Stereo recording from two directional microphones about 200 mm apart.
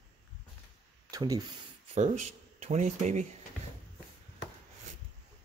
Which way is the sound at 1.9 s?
35° right (ahead or behind).